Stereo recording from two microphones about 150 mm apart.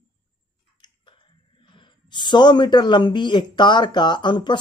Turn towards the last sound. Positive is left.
turn(degrees=30)  # may be behind; listen again after turning